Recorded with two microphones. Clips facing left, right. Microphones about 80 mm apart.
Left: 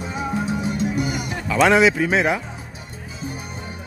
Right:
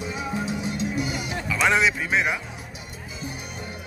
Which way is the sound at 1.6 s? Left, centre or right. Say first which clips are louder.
Left 5 dB; left.